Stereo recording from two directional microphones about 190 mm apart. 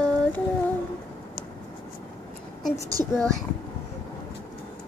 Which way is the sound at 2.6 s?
15° left (ahead or behind).